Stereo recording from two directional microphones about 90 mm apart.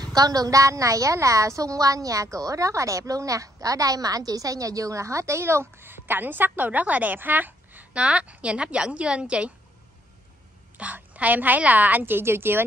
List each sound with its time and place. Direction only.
0.0 s a woman's voice: 45° right (ahead or behind); by 9.5 s 10° right (ahead or behind)
10.8 s a woman's voice: 15° right (ahead or behind)